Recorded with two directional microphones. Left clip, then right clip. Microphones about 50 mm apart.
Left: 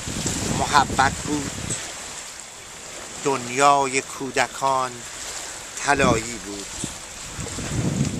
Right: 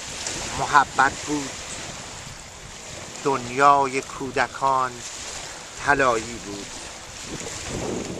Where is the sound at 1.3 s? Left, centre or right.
Right.